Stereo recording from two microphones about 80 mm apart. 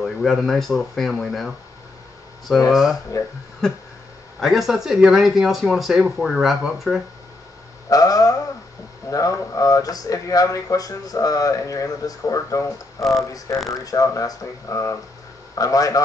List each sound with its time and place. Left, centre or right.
0.0 s speech: centre
2.7 s speech: centre
4.4 s speech: centre
7.9 s speech: left